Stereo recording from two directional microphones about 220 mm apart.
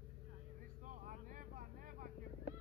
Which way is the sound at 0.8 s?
35° right (ahead or behind).